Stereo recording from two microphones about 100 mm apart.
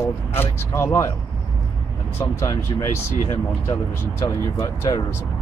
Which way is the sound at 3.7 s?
30° left (ahead or behind).